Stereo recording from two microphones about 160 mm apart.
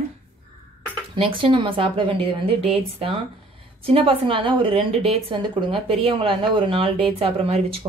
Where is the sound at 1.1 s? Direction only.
35° right (ahead or behind).